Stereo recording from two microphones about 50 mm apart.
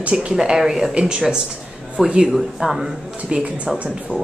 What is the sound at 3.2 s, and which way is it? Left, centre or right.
Speech, right.